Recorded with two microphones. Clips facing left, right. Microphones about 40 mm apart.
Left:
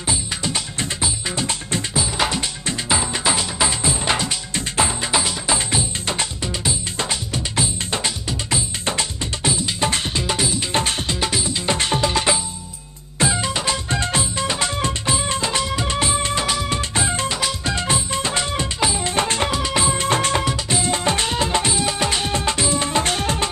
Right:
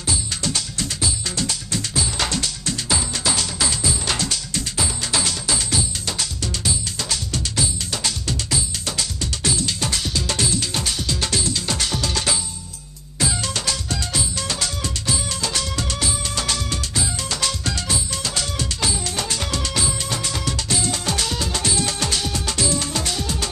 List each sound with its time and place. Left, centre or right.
0.4 s music: left
2.0 s music: centre
9.8 s music: left
10.2 s music: centre
10.7 s music: left
11.1 s music: centre
16.4 s music: left
16.9 s music: left
17.3 s music: centre
17.7 s music: left
19.1 s music: left
19.5 s music: left
20.4 s music: left
23.0 s music: left